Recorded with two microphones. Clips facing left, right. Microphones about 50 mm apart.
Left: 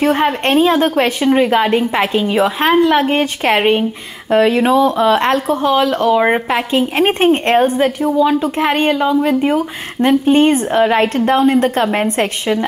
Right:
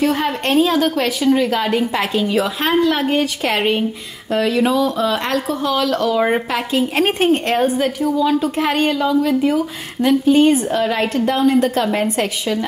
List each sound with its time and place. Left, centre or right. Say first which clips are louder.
0.0 s speech: left 4 dB; left